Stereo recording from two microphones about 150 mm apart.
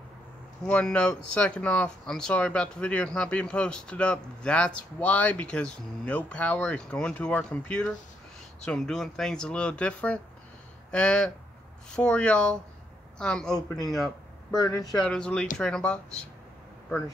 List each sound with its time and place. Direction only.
0.7 s speech: 5° left (ahead or behind)
14.6 s speech: 25° left (ahead or behind)
15.0 s speech: 5° left (ahead or behind)